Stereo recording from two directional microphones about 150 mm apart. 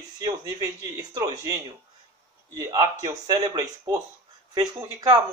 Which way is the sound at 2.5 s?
20° right (ahead or behind).